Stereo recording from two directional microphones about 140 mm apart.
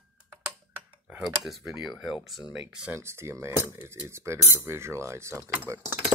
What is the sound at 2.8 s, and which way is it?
Speech, 20° right (ahead or behind).